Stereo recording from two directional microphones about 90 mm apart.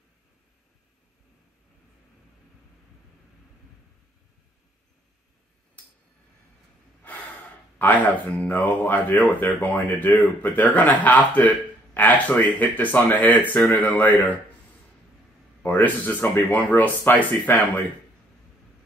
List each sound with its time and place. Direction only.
7.0 s gasp: 20° left (ahead or behind)
7.8 s speech: 15° left (ahead or behind)
15.6 s speech: 20° left (ahead or behind)